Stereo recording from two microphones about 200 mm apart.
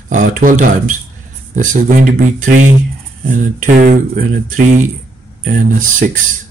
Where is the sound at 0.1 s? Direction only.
40° right (ahead or behind).